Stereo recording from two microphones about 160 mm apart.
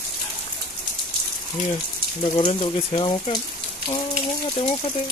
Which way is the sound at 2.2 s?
35° left (ahead or behind).